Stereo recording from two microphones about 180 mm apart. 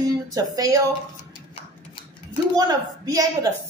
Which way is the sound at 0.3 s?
20° right (ahead or behind).